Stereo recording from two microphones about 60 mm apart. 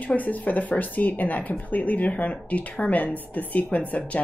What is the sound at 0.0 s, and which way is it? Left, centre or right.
A woman's voice, left.